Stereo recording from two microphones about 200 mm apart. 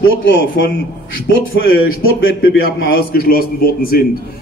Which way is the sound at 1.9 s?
85° left.